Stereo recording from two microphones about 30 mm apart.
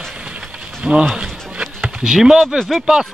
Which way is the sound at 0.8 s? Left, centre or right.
Right.